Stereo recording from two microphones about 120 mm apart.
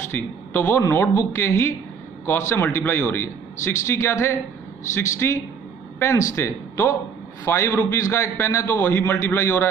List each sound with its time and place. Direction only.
0.1 s a man's voice: 20° left (ahead or behind)